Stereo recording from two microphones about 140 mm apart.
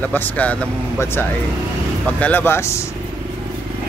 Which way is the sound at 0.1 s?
10° left (ahead or behind).